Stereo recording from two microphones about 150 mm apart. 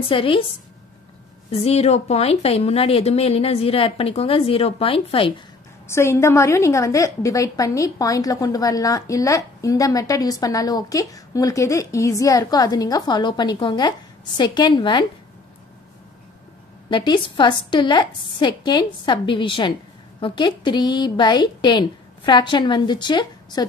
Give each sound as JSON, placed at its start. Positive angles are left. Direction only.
{"t": 0.1, "sound": "speech", "side_deg": 35}
{"t": 1.5, "sound": "speech", "side_deg": 45}
{"t": 5.9, "sound": "a woman's voice", "side_deg": 15}
{"t": 16.9, "sound": "a woman's voice", "side_deg": 30}